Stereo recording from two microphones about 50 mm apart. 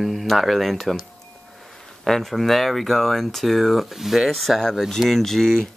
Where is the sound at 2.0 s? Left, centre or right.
Centre.